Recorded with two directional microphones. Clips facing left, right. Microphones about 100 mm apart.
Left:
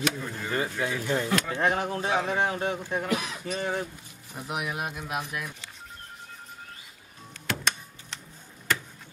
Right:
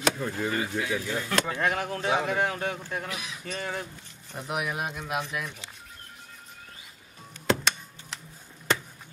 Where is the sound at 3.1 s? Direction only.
55° left (ahead or behind).